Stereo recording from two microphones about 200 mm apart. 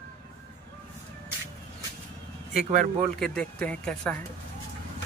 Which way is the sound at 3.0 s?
5° left (ahead or behind).